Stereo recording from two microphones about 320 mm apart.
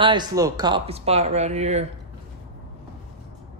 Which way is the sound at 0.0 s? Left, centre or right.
Centre.